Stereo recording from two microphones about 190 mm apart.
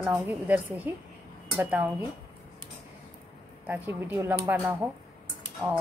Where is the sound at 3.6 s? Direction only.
10° right (ahead or behind).